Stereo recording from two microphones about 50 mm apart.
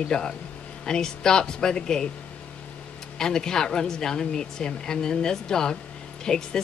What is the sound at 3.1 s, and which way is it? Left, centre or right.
Speech, centre.